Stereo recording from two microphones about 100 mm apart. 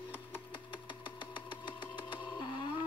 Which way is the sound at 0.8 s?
55° left (ahead or behind).